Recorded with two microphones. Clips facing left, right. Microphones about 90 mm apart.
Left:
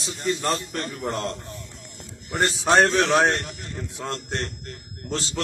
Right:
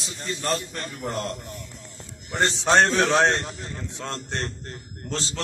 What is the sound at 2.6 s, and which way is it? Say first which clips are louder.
Speech: left 1 dB; 10° left (ahead or behind).